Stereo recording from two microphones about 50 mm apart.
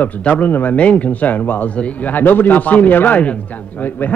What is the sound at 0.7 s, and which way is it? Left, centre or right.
Speech, left.